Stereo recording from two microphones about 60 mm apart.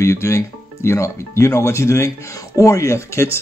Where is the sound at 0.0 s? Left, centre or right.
Left.